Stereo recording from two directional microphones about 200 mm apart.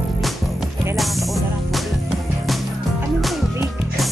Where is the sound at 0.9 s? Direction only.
Centre (ahead or behind).